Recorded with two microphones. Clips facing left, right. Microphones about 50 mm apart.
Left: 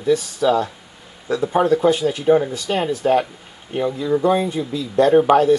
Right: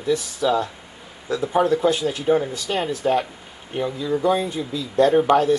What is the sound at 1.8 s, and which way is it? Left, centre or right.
Speech, centre.